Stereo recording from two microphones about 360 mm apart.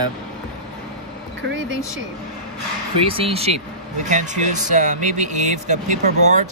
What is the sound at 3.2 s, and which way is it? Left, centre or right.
Speech, centre.